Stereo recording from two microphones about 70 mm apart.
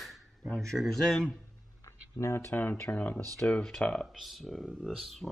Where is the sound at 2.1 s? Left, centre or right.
Left.